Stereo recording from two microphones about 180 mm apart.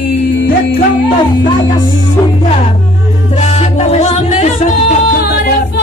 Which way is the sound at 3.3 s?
35° left (ahead or behind).